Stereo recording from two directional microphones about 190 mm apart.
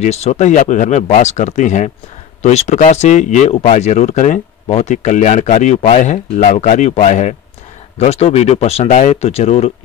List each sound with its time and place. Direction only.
0.0 s speech: 35° left (ahead or behind)